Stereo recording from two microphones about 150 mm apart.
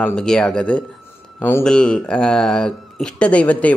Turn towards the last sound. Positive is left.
turn(degrees=10)  # may be behind; listen again after turning